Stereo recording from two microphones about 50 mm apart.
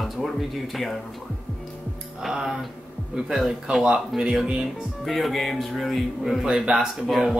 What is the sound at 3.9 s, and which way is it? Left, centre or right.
Speech, centre.